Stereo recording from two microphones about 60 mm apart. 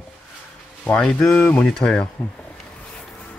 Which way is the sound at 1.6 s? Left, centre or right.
Centre.